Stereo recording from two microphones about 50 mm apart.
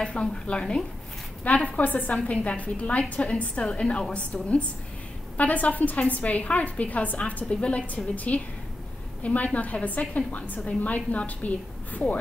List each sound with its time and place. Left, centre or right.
0.0 s a woman's voice: centre
1.4 s a woman's voice: left